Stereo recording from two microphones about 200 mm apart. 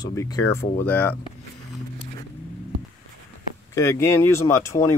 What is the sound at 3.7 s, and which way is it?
Speech, 15° left (ahead or behind).